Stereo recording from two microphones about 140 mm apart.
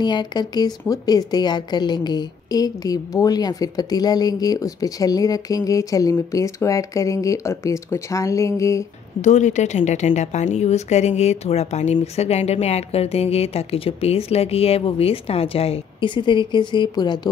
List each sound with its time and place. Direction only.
0.0 s speech: 30° left (ahead or behind)
9.2 s a woman's voice: 55° left (ahead or behind); by 17.3 s 30° left (ahead or behind)